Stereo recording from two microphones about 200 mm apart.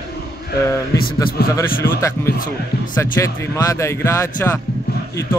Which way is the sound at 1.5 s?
15° left (ahead or behind).